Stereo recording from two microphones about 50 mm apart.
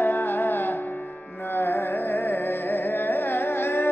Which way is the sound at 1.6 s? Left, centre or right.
Left.